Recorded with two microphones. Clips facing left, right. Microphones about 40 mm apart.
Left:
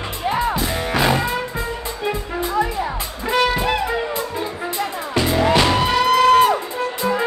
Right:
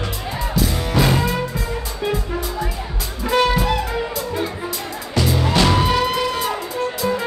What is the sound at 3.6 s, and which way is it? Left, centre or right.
Music, left.